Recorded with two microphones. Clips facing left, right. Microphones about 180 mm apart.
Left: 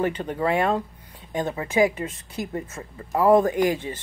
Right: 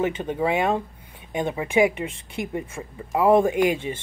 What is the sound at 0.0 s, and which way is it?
Speech, 10° right (ahead or behind).